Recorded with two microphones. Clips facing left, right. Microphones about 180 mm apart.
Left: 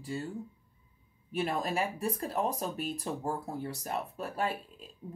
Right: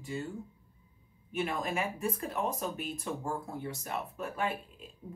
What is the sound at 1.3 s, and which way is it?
Speech, 35° left (ahead or behind).